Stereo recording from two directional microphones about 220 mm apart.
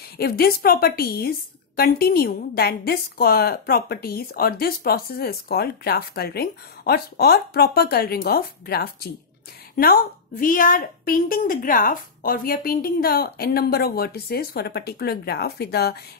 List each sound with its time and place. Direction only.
0.2 s a woman's voice: 45° left (ahead or behind)